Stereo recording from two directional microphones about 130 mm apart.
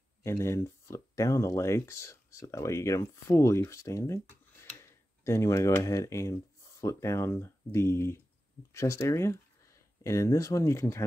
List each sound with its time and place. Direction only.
0.2 s speech: 20° left (ahead or behind)